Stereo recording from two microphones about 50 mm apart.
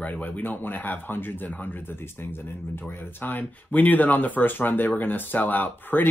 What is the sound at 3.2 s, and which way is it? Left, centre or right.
Speech, left.